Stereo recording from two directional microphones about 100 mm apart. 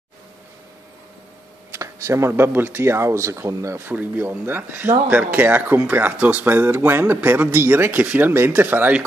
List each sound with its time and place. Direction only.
1.7 s speech: 30° right (ahead or behind)